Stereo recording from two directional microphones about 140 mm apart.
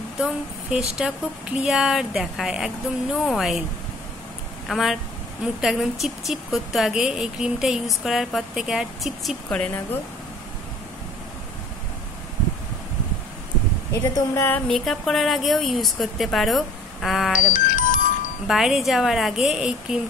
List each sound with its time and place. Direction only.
0.2 s a woman's voice: 5° right (ahead or behind)
4.6 s a woman's voice: centre (ahead or behind)
14.1 s speech: 20° left (ahead or behind)
14.7 s a woman's voice: centre (ahead or behind)
17.5 s music: 70° left (ahead or behind)
18.5 s a woman's voice: centre (ahead or behind)